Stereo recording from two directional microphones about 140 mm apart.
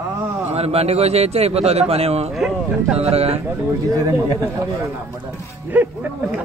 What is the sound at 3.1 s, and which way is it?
Speech, 45° right (ahead or behind).